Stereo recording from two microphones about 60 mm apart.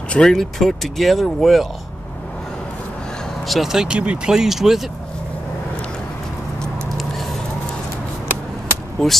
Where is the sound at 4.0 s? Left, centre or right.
Right.